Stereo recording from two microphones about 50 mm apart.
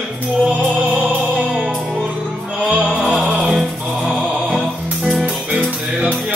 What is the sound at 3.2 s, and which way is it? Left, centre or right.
Music, centre.